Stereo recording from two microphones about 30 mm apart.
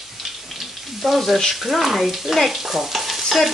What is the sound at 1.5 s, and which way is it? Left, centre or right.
Speech, centre.